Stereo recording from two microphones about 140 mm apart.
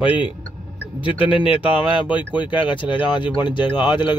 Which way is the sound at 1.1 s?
40° left (ahead or behind).